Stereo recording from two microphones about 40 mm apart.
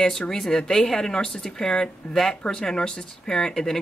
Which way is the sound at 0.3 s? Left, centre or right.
Centre.